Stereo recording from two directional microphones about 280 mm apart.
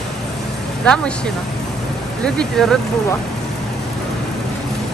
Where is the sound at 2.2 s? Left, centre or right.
Centre.